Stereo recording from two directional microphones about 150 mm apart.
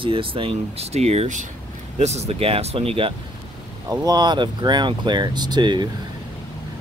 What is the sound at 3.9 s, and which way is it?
Speech, 25° right (ahead or behind).